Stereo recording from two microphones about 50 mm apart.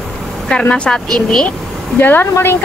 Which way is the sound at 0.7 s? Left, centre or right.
Left.